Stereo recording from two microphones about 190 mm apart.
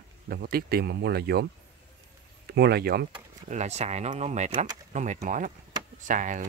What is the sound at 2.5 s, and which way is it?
Speech, 55° right (ahead or behind).